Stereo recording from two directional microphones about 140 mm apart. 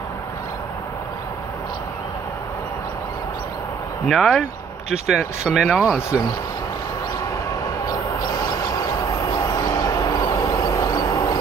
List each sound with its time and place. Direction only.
4.1 s speech: centre (ahead or behind)
5.9 s speech: 20° left (ahead or behind)
9.5 s a sound: 30° left (ahead or behind)